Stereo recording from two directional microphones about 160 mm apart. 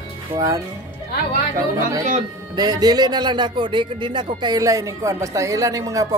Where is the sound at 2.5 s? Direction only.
25° right (ahead or behind).